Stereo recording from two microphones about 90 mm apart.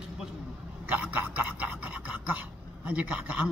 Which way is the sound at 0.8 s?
15° right (ahead or behind).